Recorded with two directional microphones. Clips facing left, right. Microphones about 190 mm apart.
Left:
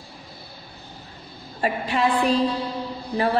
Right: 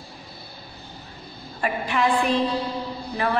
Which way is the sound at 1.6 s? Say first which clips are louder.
Left 1 dB; 30° left (ahead or behind).